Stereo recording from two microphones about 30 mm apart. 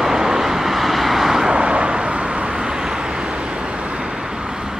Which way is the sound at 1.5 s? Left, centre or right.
Right.